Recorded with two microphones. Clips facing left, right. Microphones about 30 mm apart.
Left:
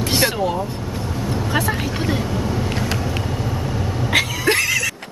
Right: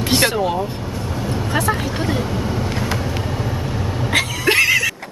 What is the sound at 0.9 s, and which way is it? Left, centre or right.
Vehicle, centre.